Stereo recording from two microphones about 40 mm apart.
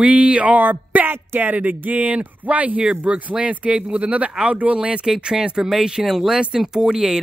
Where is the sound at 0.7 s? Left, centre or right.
Right.